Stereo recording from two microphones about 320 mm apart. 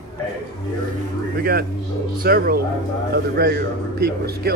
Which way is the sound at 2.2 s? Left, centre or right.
Right.